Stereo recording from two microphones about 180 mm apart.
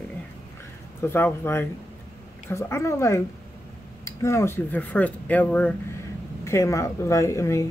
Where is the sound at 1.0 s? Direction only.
10° left (ahead or behind).